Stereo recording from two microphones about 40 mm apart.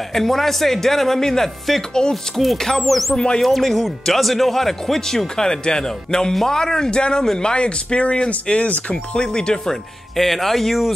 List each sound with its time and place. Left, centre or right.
0.1 s speech: centre
2.8 s speech: centre
3.1 s speech: left
3.3 s speech: centre
10.1 s speech: centre